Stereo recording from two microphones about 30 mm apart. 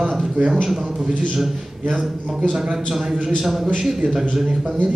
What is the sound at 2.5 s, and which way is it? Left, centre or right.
A man's voice, right.